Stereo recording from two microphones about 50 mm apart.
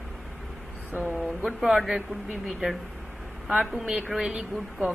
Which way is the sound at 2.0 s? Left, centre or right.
Right.